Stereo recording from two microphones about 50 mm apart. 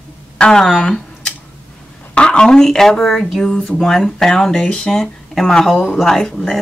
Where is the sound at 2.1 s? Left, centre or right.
Centre.